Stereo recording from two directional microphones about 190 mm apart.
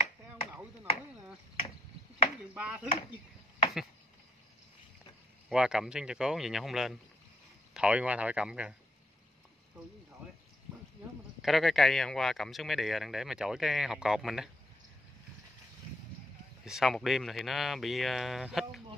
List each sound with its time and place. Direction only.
2.5 s speech: 5° right (ahead or behind)
2.9 s chop: 25° left (ahead or behind)
5.5 s speech: 5° right (ahead or behind)
11.4 s speech: centre (ahead or behind)
16.6 s speech: centre (ahead or behind)